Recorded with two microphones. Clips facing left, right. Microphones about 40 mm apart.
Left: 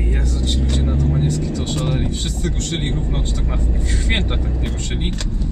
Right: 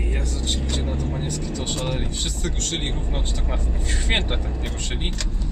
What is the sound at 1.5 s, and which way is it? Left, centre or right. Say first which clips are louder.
Vehicle: left 5 dB; centre.